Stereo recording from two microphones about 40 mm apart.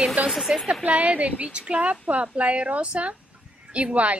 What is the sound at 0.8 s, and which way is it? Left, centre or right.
Speech, right.